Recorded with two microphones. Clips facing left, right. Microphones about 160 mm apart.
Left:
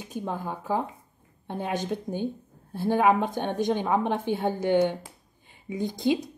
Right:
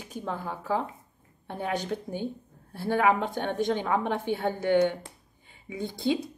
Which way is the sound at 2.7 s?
15° left (ahead or behind).